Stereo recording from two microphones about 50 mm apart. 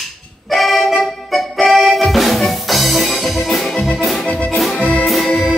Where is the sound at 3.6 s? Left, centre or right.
Centre.